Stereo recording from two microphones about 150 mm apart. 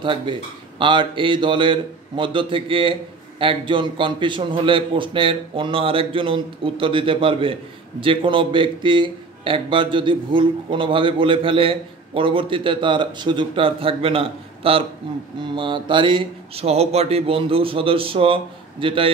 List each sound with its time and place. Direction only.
0.0 s a man's voice: 35° right (ahead or behind)